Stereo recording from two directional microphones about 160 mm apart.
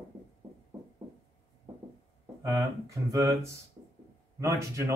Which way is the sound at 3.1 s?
20° right (ahead or behind).